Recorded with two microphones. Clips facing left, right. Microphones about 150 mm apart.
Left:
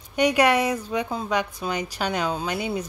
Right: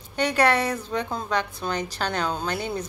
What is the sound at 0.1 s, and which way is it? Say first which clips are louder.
A woman's voice: left 2 dB; 15° left (ahead or behind).